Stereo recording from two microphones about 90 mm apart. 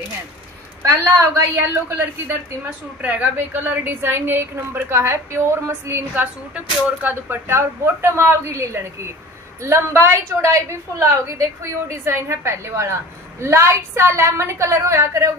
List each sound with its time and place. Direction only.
0.8 s a woman's voice: 35° right (ahead or behind)
3.0 s a woman's voice: 15° right (ahead or behind); by 15.3 s 35° right (ahead or behind)